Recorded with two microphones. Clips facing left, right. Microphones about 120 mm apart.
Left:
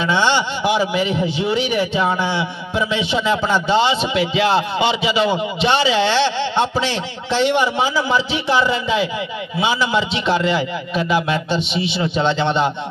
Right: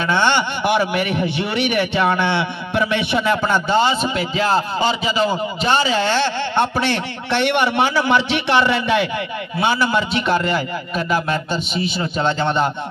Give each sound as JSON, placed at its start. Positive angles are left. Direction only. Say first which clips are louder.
{"t": 0.0, "sound": "a man's voice", "louder": "even", "side_deg": -50}
{"t": 9.6, "sound": "a man's voice", "louder": "even", "side_deg": -55}